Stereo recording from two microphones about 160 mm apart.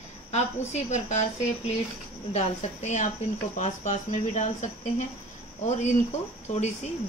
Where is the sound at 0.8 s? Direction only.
45° left (ahead or behind).